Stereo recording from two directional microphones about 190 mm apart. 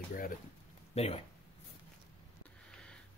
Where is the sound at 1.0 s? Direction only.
35° left (ahead or behind).